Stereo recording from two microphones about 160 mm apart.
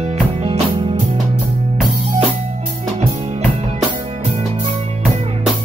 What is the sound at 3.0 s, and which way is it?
Music, 45° right (ahead or behind).